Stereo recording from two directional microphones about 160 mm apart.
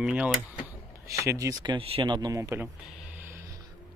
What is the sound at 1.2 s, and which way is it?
Speech, 20° right (ahead or behind).